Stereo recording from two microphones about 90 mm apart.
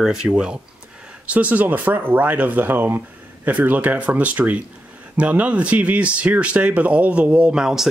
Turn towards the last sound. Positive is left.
turn(degrees=-5)  # may be behind; listen again after turning